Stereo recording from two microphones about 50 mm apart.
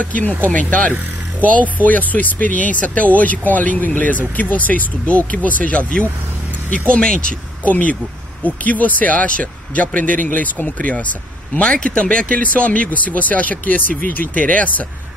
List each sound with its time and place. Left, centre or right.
0.0 s speech: left
7.6 s speech: left
11.6 s speech: left